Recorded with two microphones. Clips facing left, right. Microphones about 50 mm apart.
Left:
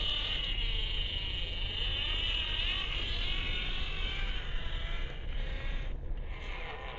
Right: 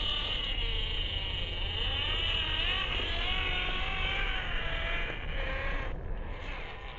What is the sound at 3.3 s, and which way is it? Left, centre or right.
Vehicle, right.